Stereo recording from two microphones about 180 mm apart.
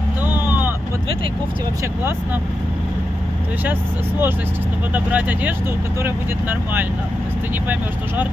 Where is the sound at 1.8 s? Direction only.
15° right (ahead or behind).